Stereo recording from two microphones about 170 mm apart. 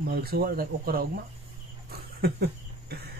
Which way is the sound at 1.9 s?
70° right (ahead or behind).